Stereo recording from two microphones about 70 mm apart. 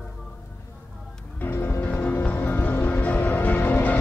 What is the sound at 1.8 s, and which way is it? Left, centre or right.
Music, centre.